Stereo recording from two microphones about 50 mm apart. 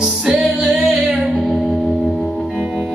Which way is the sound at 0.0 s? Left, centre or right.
Centre.